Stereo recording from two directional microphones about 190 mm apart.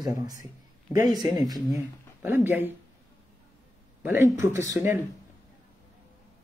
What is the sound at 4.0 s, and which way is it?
Speech, 10° right (ahead or behind).